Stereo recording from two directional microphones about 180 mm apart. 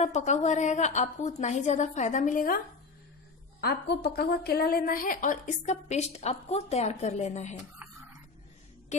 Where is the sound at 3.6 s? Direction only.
65° left (ahead or behind); by 7.5 s 40° left (ahead or behind).